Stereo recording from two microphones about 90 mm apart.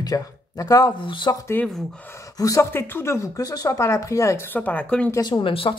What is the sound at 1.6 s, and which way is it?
Speech, 20° left (ahead or behind).